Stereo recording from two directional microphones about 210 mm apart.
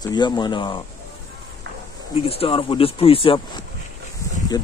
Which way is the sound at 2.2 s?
25° left (ahead or behind).